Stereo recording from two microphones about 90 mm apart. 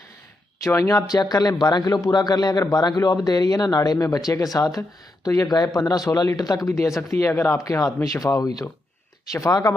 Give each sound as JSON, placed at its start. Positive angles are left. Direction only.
{"t": 0.7, "sound": "a man's voice", "side_deg": 35}